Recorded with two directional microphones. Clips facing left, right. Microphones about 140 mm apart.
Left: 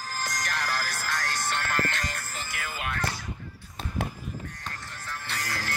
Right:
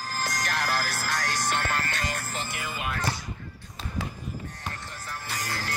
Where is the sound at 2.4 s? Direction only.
20° right (ahead or behind).